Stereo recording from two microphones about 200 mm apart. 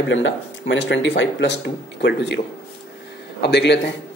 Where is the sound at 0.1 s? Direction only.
70° left (ahead or behind).